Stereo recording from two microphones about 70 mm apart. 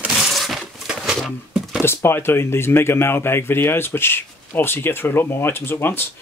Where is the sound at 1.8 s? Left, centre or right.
Left.